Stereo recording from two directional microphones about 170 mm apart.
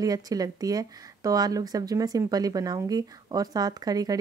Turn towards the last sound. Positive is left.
turn(degrees=-20)  # may be behind; listen again after turning